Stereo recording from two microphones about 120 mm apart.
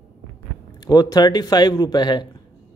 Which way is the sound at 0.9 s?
30° left (ahead or behind).